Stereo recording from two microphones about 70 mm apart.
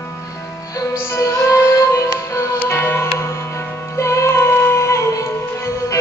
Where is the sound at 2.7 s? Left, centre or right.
Left.